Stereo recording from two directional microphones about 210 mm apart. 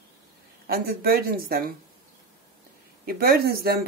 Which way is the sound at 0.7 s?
45° right (ahead or behind).